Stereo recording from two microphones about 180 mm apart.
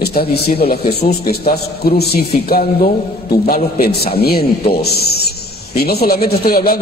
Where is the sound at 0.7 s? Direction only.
60° left (ahead or behind).